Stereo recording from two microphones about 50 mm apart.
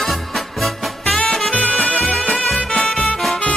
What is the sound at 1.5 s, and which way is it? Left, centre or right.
Music, left.